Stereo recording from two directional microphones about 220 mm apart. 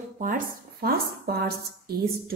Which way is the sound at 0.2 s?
40° right (ahead or behind).